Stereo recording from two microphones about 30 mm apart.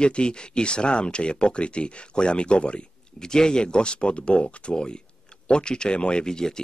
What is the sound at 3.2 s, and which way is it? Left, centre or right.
Speech, left.